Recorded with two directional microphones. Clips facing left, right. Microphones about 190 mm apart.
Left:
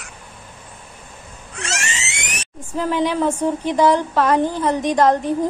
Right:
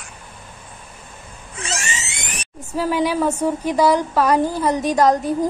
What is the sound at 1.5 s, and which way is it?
Screaming, 75° left (ahead or behind).